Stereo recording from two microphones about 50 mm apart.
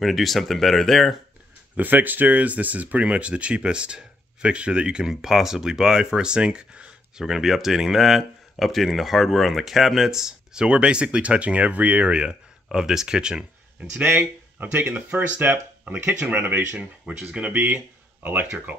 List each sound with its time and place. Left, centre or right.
0.0 s speech: centre
1.8 s speech: right
12.7 s speech: centre
14.0 s speech: right
16.7 s speech: centre
17.5 s speech: right